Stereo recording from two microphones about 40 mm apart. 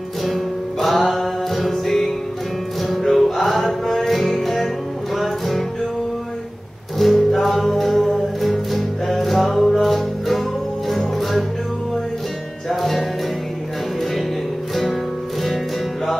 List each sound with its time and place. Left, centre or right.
0.2 s music: centre
7.0 s music: centre
12.6 s music: centre